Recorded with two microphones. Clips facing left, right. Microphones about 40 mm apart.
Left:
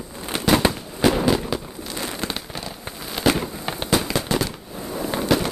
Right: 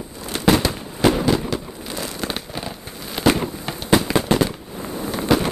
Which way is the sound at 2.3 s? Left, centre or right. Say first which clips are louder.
Right 2 dB; centre.